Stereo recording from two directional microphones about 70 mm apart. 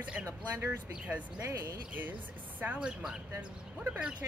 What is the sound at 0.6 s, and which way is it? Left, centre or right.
Speech, right.